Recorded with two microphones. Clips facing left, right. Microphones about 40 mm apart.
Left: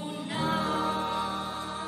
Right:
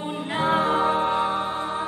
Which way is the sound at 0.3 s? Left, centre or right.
Right.